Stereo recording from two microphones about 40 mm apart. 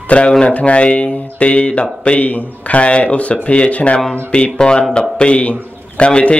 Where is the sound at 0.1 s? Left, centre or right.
Left.